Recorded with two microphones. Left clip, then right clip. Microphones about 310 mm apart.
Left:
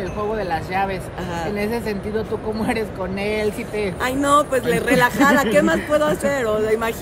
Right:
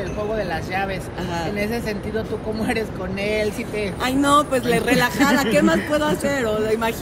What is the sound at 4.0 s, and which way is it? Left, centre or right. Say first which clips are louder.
Speech: even; centre.